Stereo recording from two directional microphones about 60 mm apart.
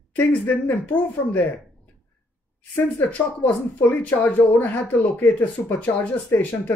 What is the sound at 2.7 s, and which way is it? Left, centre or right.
Speech, left.